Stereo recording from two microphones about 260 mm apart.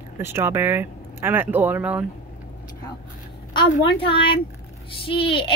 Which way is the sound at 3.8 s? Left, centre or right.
Centre.